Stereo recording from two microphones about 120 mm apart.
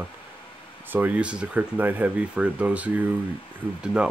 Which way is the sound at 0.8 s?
15° right (ahead or behind).